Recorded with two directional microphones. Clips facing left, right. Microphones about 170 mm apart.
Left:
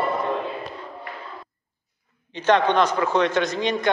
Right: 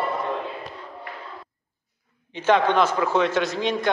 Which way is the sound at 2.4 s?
5° right (ahead or behind).